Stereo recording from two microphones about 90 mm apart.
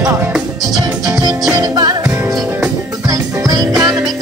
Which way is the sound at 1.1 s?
45° right (ahead or behind).